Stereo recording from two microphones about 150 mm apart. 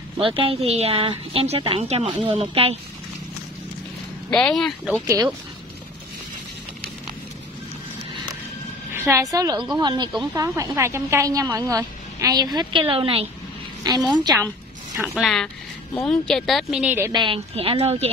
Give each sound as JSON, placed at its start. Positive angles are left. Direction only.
{"t": 0.2, "sound": "a woman's voice", "side_deg": -35}
{"t": 4.3, "sound": "a woman's voice", "side_deg": 5}
{"t": 5.0, "sound": "a woman's voice", "side_deg": -20}
{"t": 8.9, "sound": "a woman's voice", "side_deg": -20}
{"t": 15.0, "sound": "a woman's voice", "side_deg": 0}
{"t": 16.8, "sound": "a woman's voice", "side_deg": -15}
{"t": 17.1, "sound": "a woman's voice", "side_deg": -35}